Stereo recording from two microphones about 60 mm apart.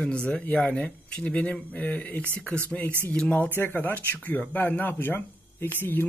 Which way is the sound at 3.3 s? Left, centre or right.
Left.